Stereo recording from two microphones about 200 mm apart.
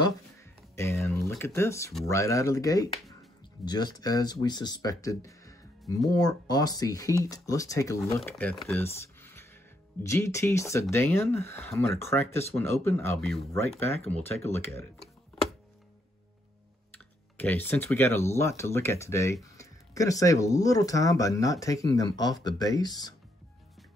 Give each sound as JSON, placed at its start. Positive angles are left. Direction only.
{"t": 0.7, "sound": "a sound", "side_deg": 10}
{"t": 1.4, "sound": "speech", "side_deg": 15}
{"t": 17.4, "sound": "speech", "side_deg": 10}